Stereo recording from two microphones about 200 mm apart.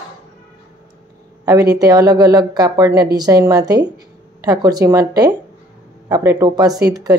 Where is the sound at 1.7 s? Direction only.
20° right (ahead or behind).